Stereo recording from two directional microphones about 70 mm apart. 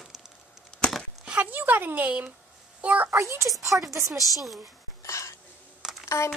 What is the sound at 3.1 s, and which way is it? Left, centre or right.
Speech, right.